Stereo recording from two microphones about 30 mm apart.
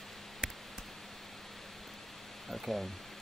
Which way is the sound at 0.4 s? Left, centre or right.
Right.